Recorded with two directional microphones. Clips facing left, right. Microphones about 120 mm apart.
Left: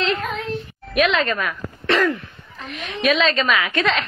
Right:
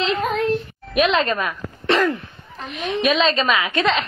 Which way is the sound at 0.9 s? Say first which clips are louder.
Right 1 dB; 25° right (ahead or behind).